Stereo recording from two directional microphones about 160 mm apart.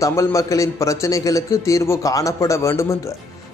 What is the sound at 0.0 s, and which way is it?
A man's voice, 20° left (ahead or behind).